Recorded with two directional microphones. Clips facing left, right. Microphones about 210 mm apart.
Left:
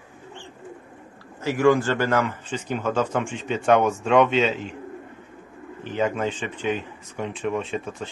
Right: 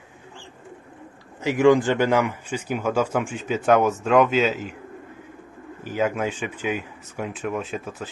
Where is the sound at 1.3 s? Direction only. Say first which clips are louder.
Right 2 dB; 15° right (ahead or behind).